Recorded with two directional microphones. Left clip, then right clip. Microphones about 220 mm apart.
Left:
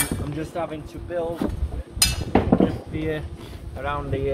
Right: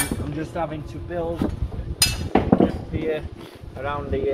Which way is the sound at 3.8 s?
10° left (ahead or behind).